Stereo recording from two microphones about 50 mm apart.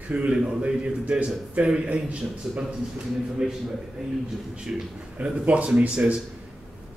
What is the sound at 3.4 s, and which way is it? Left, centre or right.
Speech, centre.